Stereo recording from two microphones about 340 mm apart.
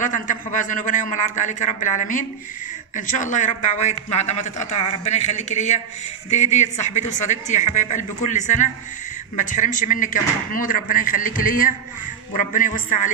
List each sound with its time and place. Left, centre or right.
0.0 s a woman's voice: left